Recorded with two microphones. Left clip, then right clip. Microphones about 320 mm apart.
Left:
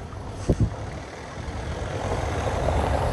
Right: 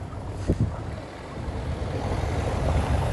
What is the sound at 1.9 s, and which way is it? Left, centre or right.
Vehicle, left.